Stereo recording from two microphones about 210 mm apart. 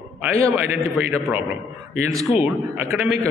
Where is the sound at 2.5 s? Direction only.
10° right (ahead or behind).